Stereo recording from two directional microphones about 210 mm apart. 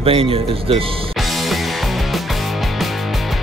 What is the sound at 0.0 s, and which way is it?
Speech, 25° right (ahead or behind).